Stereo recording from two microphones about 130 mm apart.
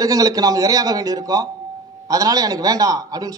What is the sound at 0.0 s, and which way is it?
A man's voice, 25° right (ahead or behind).